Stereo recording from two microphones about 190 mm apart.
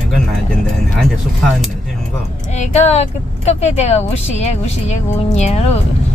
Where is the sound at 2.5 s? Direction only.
35° left (ahead or behind).